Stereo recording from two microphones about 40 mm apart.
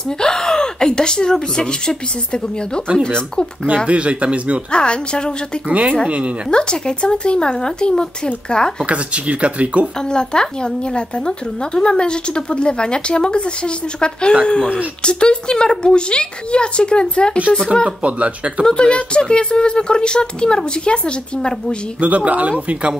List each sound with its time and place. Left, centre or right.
0.2 s a woman's voice: centre
3.6 s speech: right
4.6 s a woman's voice: left
5.7 s speech: right
6.5 s a woman's voice: left
8.8 s speech: right
9.9 s a woman's voice: centre
17.8 s speech: right
18.7 s a woman's voice: left
22.0 s speech: right